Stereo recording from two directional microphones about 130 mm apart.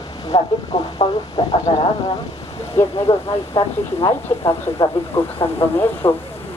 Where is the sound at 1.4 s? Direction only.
50° left (ahead or behind).